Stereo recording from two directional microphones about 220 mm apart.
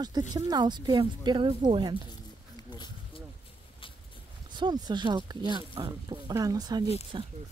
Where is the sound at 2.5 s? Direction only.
20° left (ahead or behind).